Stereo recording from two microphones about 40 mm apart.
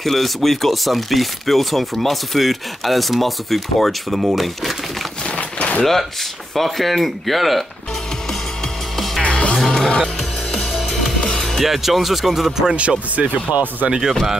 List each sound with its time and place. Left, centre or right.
0.0 s speech: centre
5.3 s a sound: left
6.5 s speech: centre
9.2 s music: left
9.7 s music: centre
11.3 s music: centre
11.6 s speech: centre
13.5 s speech: right
13.8 s speech: centre